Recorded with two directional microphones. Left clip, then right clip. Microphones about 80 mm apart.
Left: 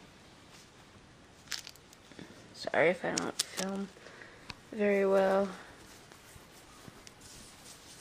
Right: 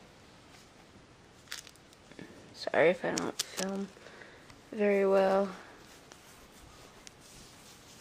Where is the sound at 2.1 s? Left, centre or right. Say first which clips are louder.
Right 1 dB; centre.